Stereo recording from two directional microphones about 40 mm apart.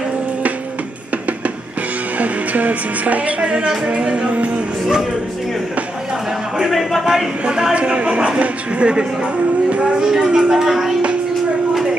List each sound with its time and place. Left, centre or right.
2.1 s speech: right
3.3 s music: right
6.7 s speech: centre
7.4 s music: centre
8.4 s speech: right
9.7 s music: right
9.9 s music: centre
10.6 s speech: centre